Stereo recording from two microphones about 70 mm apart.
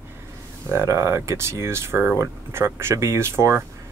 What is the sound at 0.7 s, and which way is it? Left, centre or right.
Speech, right.